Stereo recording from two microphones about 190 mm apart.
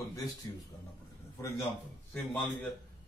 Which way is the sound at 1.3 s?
15° left (ahead or behind).